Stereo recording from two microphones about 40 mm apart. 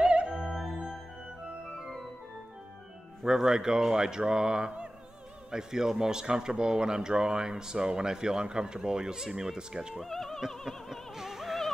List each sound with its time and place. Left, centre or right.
0.0 s music: right
3.3 s speech: centre
10.0 s music: centre
10.5 s opera: centre
11.1 s music: centre